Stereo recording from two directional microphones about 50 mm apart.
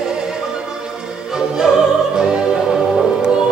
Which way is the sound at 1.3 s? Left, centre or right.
Centre.